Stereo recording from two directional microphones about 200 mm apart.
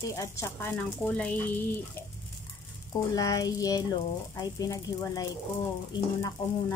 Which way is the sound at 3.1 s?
15° left (ahead or behind).